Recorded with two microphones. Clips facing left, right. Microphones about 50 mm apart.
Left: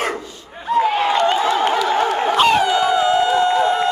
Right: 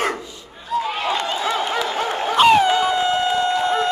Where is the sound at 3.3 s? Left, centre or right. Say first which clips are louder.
Left 3 dB; left.